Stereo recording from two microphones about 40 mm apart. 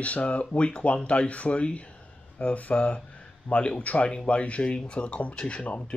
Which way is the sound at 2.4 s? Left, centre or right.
Left.